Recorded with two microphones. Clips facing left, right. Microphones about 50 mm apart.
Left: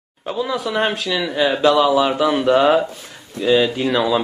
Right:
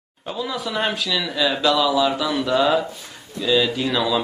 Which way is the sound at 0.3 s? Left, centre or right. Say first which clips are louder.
Left 5 dB; centre.